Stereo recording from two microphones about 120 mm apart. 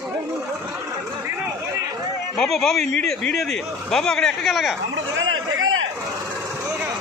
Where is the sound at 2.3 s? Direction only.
5° left (ahead or behind).